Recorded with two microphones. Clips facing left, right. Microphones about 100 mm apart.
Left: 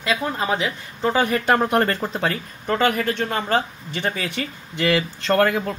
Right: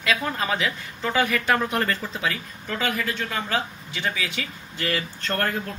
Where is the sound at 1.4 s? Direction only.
45° left (ahead or behind).